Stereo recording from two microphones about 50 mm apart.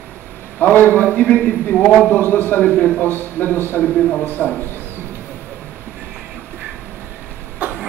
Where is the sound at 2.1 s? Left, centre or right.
Left.